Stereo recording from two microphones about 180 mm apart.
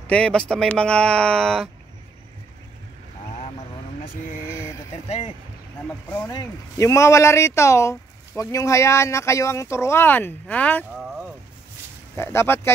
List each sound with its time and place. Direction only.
0.0 s speech: 5° left (ahead or behind)
4.5 s a sound: 15° left (ahead or behind)
5.0 s speech: 35° left (ahead or behind)
6.0 s speech: 20° left (ahead or behind)
11.0 s a sound: centre (ahead or behind)
12.2 s speech: 15° left (ahead or behind)